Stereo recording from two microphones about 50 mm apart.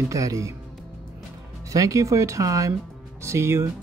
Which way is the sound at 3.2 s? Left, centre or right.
Right.